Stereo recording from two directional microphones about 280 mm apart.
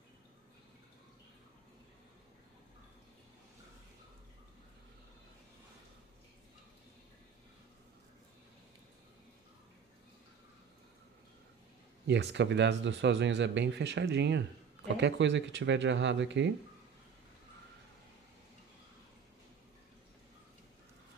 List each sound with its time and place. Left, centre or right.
12.1 s speech: right